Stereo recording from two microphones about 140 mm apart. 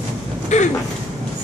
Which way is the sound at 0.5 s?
55° left (ahead or behind).